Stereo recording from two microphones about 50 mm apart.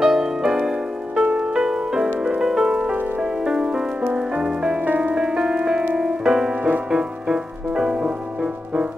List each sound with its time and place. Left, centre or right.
0.0 s music: centre
4.8 s music: right
5.1 s music: centre